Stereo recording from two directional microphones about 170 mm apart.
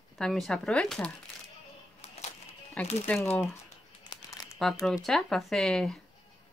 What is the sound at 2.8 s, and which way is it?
Speech, 5° left (ahead or behind).